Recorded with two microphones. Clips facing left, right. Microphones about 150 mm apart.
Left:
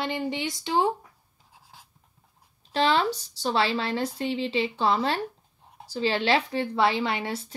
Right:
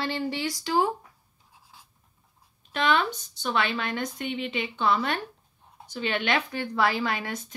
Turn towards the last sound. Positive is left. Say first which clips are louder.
# left 1 dB
turn(degrees=30)  # may be behind; listen again after turning